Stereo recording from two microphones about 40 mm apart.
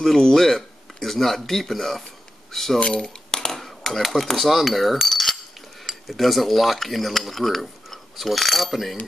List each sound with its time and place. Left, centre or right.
0.0 s speech: centre
2.8 s speech: left
3.3 s cutlery: centre
6.0 s speech: centre